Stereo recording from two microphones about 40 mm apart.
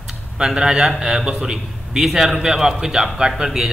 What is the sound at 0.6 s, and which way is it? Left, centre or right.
A man's voice, centre.